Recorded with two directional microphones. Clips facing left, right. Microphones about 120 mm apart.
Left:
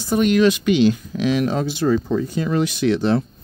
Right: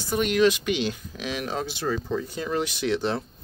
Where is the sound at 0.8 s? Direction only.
90° left.